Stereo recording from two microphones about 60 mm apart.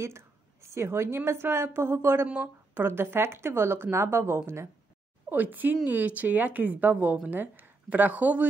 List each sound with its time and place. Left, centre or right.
0.0 s a woman's voice: right
2.2 s speech: right
5.3 s a woman's voice: right